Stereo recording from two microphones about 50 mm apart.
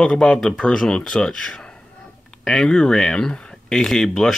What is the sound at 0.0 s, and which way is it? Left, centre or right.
Speech, centre.